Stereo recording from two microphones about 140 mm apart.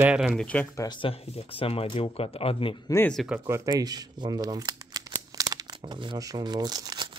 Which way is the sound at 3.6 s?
30° right (ahead or behind).